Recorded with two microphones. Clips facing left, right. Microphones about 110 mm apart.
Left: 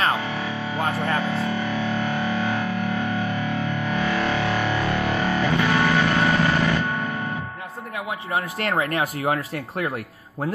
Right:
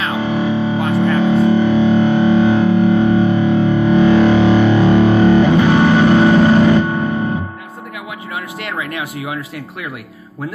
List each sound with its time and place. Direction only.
0.2 s music: 20° right (ahead or behind)
8.3 s speech: 40° left (ahead or behind)